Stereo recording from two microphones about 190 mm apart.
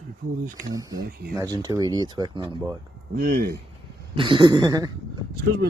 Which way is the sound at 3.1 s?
50° right (ahead or behind).